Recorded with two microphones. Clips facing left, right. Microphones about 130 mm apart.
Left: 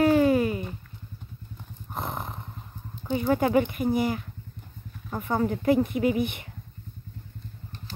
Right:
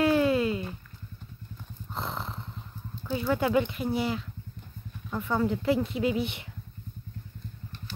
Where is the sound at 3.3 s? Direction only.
50° left (ahead or behind).